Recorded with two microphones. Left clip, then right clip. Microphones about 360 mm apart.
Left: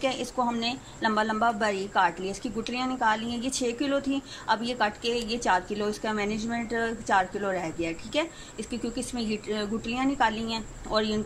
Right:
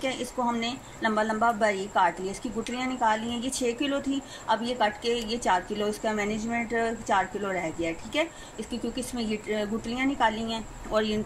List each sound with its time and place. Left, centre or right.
0.0 s a woman's voice: centre